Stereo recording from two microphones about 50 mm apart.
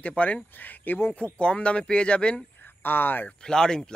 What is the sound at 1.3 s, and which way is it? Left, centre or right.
A man's voice, left.